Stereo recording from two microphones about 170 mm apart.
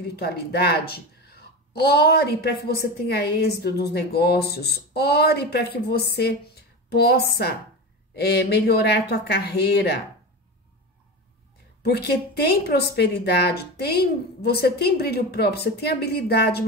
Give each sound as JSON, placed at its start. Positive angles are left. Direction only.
{"t": 0.1, "sound": "a woman's voice", "side_deg": 70}
{"t": 11.8, "sound": "a woman's voice", "side_deg": 70}